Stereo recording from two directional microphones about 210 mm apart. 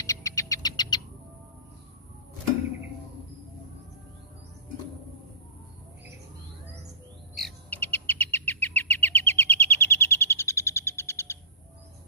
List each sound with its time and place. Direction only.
0.0 s music: 15° left (ahead or behind)
7.3 s bird: 5° left (ahead or behind)